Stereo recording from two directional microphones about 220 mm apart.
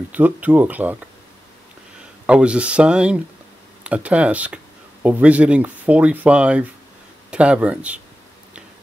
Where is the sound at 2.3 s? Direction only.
5° right (ahead or behind).